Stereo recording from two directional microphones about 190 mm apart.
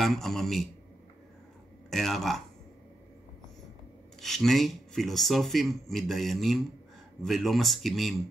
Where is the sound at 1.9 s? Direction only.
Centre (ahead or behind).